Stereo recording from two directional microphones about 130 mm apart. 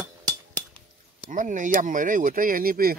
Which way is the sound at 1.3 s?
80° right.